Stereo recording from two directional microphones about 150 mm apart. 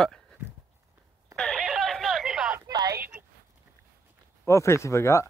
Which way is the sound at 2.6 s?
25° right (ahead or behind).